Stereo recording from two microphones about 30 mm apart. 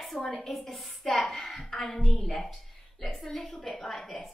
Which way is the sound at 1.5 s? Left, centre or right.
Centre.